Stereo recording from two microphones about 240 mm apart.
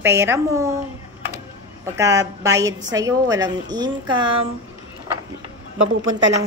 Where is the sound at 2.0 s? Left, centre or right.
Centre.